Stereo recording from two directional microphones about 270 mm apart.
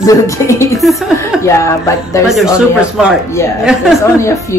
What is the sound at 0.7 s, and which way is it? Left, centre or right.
Speech, centre.